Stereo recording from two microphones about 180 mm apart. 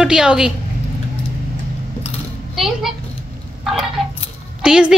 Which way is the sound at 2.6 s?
Centre (ahead or behind).